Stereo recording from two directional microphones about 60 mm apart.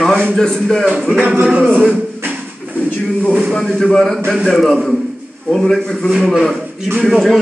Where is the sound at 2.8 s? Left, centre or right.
Left.